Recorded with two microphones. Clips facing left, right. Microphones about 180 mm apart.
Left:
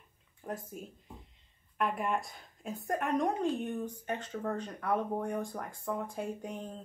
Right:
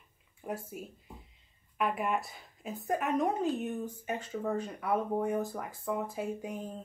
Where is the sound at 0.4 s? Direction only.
10° right (ahead or behind).